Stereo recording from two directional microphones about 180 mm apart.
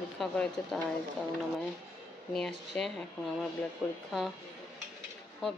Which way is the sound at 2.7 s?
5° left (ahead or behind).